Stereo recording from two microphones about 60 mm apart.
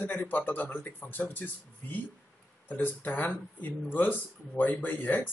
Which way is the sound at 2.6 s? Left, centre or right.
Left.